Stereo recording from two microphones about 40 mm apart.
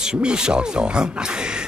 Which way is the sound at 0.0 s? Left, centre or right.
Right.